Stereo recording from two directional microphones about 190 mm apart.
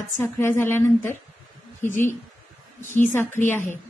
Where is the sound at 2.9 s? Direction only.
40° left (ahead or behind).